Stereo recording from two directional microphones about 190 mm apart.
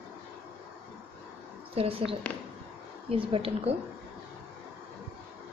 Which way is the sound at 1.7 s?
30° right (ahead or behind).